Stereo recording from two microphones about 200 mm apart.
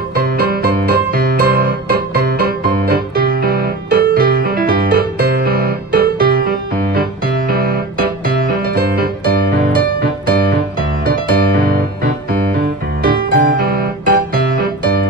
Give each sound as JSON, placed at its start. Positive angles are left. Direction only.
{"t": 0.1, "sound": "music", "side_deg": -50}
{"t": 11.1, "sound": "music", "side_deg": -45}
{"t": 13.0, "sound": "music", "side_deg": -50}